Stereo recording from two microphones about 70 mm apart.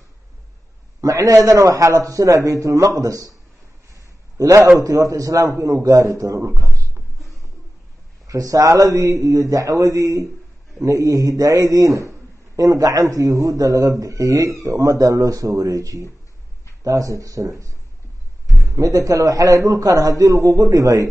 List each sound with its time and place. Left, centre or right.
1.0 s speech: right
3.9 s a sound: right
4.7 s speech: right
8.3 s speech: right
18.8 s speech: right